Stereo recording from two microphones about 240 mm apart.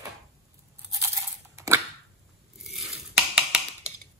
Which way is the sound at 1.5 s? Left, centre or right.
Centre.